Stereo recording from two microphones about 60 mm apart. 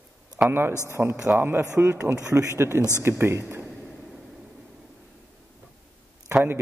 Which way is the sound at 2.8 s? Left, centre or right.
Left.